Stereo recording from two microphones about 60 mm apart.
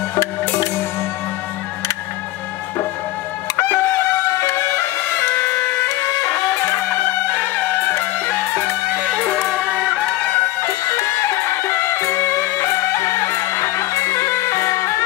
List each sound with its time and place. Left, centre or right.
0.1 s music: left
3.5 s music: left
5.3 s music: left
10.6 s music: left